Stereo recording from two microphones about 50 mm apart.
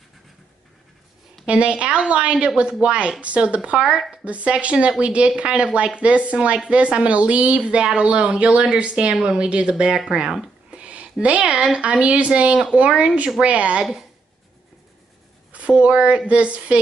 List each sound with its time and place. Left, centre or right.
1.4 s a woman's voice: right
4.1 s a woman's voice: right
10.0 s a sound: centre
11.6 s a woman's voice: right
15.5 s a woman's voice: right